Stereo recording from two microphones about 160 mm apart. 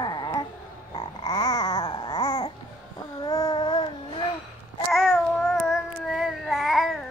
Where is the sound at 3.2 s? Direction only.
25° left (ahead or behind).